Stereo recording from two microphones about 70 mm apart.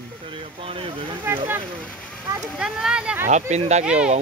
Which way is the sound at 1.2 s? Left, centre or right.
Right.